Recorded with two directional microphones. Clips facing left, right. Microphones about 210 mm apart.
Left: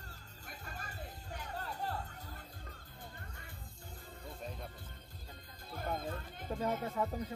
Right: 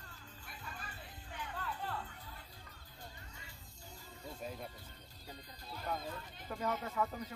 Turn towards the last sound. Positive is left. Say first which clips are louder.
# left 2 dB
turn(degrees=30)  # may be behind; listen again after turning